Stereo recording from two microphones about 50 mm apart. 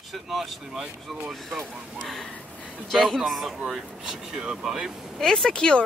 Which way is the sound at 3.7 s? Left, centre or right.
Centre.